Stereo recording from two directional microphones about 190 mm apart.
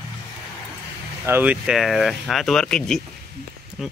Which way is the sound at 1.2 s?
10° right (ahead or behind).